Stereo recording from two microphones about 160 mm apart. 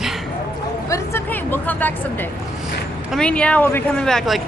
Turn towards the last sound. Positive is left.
turn(degrees=0)  # may be behind; listen again after turning